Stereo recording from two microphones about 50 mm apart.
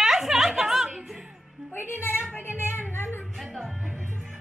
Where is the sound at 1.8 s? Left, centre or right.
Left.